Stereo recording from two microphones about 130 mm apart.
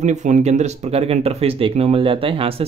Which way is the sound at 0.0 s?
65° right (ahead or behind).